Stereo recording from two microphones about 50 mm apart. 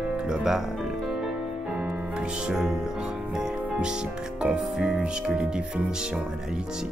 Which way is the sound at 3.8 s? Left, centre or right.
Centre.